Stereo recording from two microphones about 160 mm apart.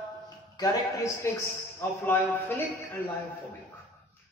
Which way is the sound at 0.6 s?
20° left (ahead or behind).